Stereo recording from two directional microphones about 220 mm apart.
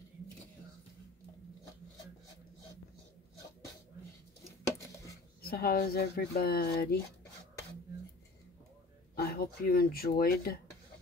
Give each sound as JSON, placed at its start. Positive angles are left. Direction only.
{"t": 5.4, "sound": "speech", "side_deg": 45}
{"t": 9.1, "sound": "speech", "side_deg": 45}